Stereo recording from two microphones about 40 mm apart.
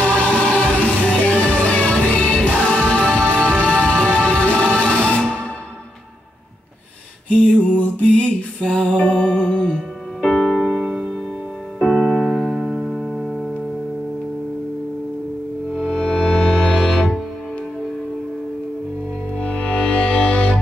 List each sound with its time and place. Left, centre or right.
0.1 s music: left
7.7 s music: left
8.5 s music: centre
8.9 s music: left
10.2 s music: centre
10.5 s music: right
11.8 s music: centre
15.9 s music: left
19.4 s music: left